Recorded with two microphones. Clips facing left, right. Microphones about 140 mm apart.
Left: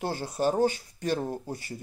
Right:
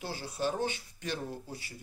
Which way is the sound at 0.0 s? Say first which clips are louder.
Left 7 dB; 50° left (ahead or behind).